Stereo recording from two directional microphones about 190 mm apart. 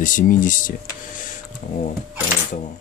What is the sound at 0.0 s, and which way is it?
Speech, 45° left (ahead or behind).